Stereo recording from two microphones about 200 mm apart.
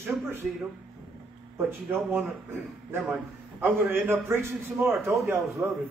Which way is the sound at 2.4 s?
10° right (ahead or behind).